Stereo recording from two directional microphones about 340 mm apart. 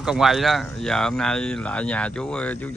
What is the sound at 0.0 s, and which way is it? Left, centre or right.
Speech, centre.